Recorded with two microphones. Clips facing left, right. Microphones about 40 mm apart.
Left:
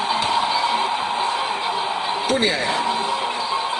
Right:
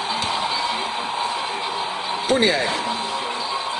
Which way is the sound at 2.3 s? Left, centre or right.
Centre.